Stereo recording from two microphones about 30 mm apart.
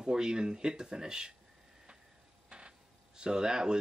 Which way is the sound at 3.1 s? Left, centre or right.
Right.